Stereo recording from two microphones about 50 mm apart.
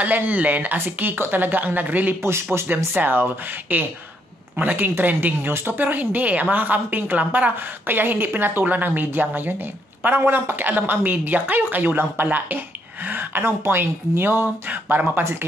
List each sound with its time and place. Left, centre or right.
0.0 s speech: right
0.7 s speech: right
2.5 s speech: right